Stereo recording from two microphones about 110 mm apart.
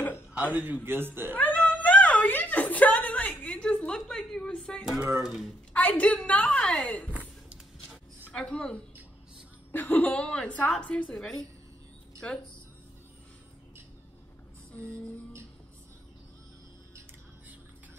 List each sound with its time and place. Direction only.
0.3 s a man's voice: 15° right (ahead or behind)
1.3 s a sound: 15° left (ahead or behind)
5.2 s speech: centre (ahead or behind)
5.7 s a woman's voice: 10° left (ahead or behind)
7.4 s a sound: 10° right (ahead or behind)
8.3 s a woman's voice: 10° left (ahead or behind)